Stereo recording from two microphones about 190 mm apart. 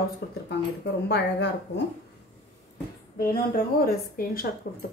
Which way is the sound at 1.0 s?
65° left (ahead or behind).